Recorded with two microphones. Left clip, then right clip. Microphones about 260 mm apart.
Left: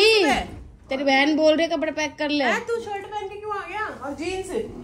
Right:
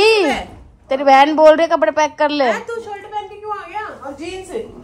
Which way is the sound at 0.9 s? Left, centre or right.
Right.